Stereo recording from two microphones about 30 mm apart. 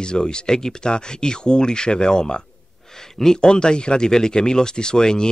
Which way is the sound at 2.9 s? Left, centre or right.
Centre.